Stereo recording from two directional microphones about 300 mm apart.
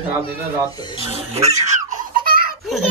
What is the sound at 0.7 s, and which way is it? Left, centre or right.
Speech, centre.